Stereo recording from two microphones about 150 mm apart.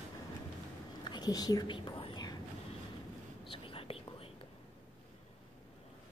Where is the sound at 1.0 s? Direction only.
30° left (ahead or behind).